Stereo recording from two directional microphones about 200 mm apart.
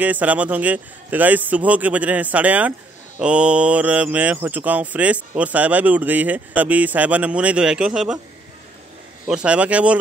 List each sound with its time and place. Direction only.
0.0 s speech: 10° right (ahead or behind)
9.3 s speech: 5° right (ahead or behind)